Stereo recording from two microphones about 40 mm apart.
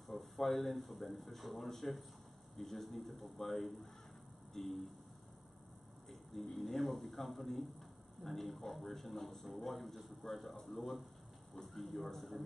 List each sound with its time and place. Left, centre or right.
0.1 s a man's voice: centre
6.0 s a man's voice: centre